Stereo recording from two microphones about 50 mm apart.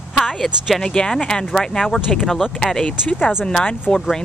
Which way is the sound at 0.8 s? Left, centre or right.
Centre.